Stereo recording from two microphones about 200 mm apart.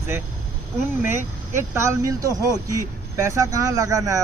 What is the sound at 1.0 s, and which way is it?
A man's voice, 10° right (ahead or behind).